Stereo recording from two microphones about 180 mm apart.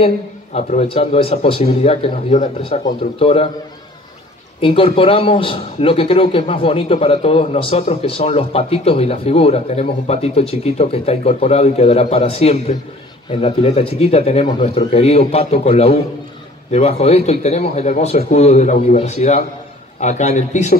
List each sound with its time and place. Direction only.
0.0 s a man's voice: 35° left (ahead or behind)
4.6 s a man's voice: 30° left (ahead or behind)